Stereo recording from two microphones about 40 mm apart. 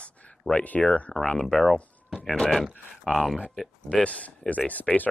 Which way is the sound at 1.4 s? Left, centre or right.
Centre.